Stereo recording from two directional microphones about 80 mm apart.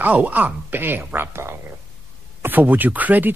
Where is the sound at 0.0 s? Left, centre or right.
Right.